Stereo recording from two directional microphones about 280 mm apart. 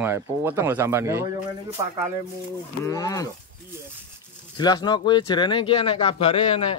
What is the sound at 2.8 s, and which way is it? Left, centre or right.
Speech, centre.